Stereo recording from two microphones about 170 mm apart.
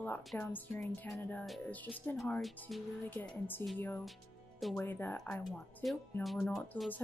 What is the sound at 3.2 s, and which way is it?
Speech, 10° left (ahead or behind).